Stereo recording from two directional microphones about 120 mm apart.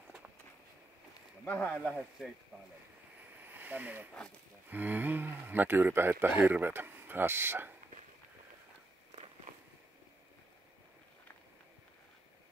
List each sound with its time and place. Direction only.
1.4 s speech: 10° left (ahead or behind)
1.9 s speech: 5° right (ahead or behind)
3.4 s a sound: 15° right (ahead or behind)
4.6 s speech: 15° right (ahead or behind)
9.1 s walk: 65° right (ahead or behind)